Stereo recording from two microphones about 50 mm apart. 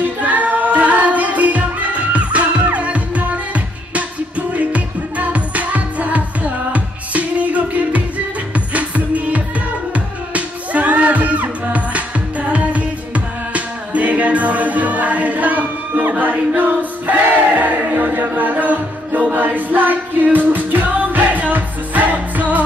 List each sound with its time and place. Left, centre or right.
0.0 s music: right